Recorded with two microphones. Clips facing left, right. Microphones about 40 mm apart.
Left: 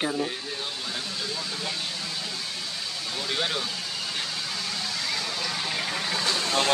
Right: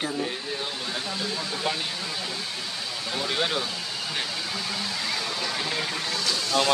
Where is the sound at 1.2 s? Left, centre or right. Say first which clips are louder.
Right 5 dB; centre.